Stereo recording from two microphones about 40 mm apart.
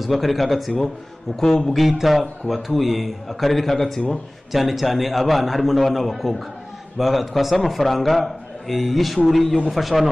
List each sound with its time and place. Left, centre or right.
0.0 s a man's voice: centre
1.3 s a man's voice: centre
1.9 s a man's voice: centre
4.5 s a man's voice: centre